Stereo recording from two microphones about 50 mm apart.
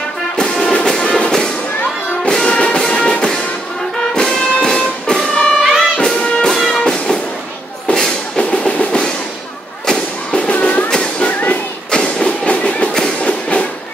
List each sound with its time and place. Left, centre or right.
0.4 s music: centre
5.6 s music: centre
6.8 s music: centre
8.5 s music: left